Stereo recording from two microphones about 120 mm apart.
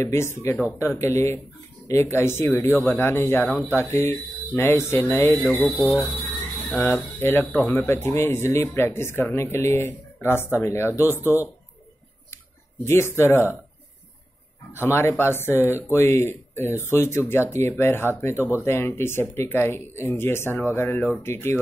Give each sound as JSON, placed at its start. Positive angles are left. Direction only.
{"t": 0.0, "sound": "speech", "side_deg": 20}
{"t": 12.8, "sound": "speech", "side_deg": 20}
{"t": 14.7, "sound": "speech", "side_deg": 20}